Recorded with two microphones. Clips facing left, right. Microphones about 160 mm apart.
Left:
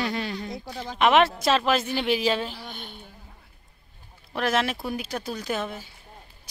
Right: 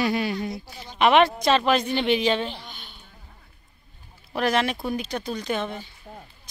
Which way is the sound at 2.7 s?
50° left (ahead or behind).